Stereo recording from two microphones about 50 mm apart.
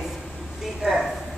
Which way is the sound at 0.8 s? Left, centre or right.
Centre.